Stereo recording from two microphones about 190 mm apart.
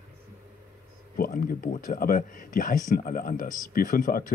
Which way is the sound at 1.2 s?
50° left (ahead or behind).